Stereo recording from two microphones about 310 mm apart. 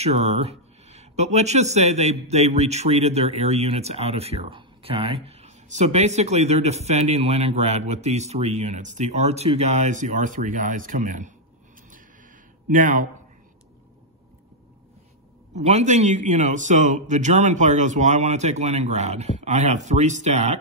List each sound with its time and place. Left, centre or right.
0.0 s speech: right
12.6 s speech: right
15.6 s speech: right